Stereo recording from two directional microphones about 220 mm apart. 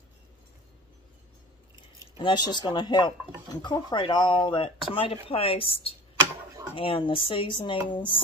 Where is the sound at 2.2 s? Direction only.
20° left (ahead or behind).